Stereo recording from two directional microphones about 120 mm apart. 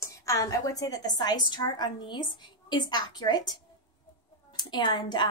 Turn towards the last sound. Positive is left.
turn(degrees=40)  # may be behind; listen again after turning